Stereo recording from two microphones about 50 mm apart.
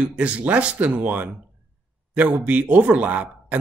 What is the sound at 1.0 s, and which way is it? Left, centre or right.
Speech, right.